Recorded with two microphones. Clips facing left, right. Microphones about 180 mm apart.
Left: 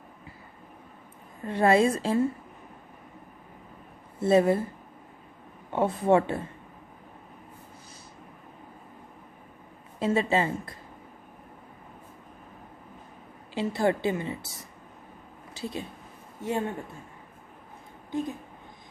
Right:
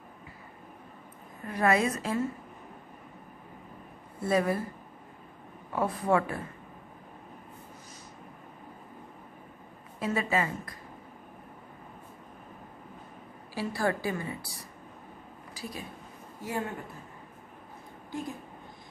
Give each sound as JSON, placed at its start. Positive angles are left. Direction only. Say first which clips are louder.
{"t": 1.4, "sound": "a woman's voice", "louder": "left 5 dB", "side_deg": 30}
{"t": 4.2, "sound": "a woman's voice", "louder": "left 6 dB", "side_deg": 25}
{"t": 5.7, "sound": "a woman's voice", "louder": "left 5 dB", "side_deg": 25}
{"t": 9.9, "sound": "a woman's voice", "louder": "left 4 dB", "side_deg": 25}
{"t": 13.6, "sound": "a woman's voice", "louder": "left 4 dB", "side_deg": 20}